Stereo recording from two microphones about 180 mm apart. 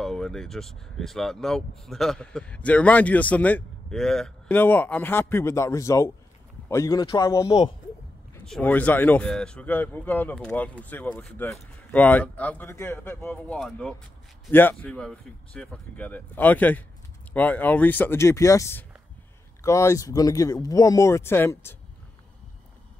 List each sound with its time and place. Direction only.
0.0 s a man's voice: 5° left (ahead or behind); by 7.7 s 20° left (ahead or behind)
8.5 s speech: 5° left (ahead or behind)